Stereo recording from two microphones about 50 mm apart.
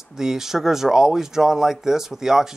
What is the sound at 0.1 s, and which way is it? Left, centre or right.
Speech, centre.